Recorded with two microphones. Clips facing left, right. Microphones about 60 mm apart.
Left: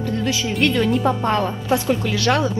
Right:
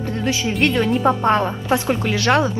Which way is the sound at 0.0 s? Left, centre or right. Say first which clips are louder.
Even; right.